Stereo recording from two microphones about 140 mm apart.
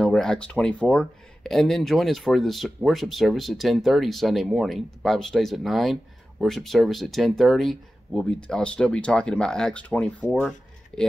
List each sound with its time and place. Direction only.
0.0 s speech: 5° left (ahead or behind)